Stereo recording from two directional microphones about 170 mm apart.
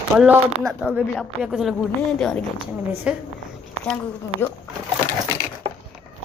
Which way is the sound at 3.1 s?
5° right (ahead or behind).